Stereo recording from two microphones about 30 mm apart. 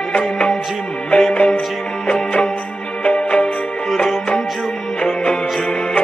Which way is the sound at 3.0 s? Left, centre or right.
Left.